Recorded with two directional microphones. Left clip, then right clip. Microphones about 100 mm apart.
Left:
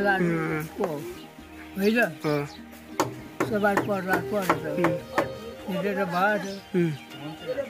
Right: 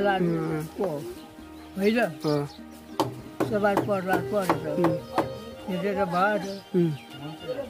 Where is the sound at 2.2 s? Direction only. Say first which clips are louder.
Even; 20° right (ahead or behind).